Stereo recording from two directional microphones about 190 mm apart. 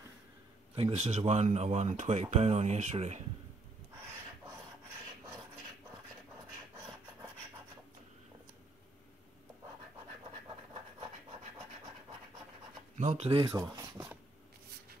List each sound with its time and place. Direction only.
0.7 s speech: 30° right (ahead or behind)
12.9 s speech: 35° right (ahead or behind)
13.6 s a sound: 20° right (ahead or behind)